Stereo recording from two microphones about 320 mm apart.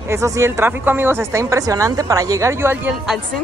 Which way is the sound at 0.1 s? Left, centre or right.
Centre.